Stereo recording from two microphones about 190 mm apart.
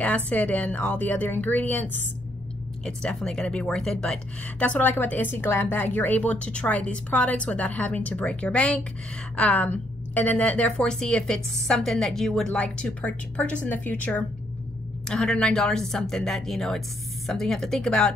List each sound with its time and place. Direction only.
0.0 s a woman's voice: 5° left (ahead or behind)